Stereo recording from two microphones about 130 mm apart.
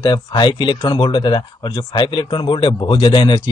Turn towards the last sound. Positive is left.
turn(degrees=35)  # may be behind; listen again after turning